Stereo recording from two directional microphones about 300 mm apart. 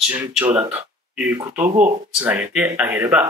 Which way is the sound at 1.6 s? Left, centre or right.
Right.